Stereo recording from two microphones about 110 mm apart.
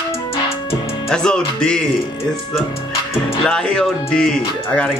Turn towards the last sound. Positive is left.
turn(degrees=10)  # may be behind; listen again after turning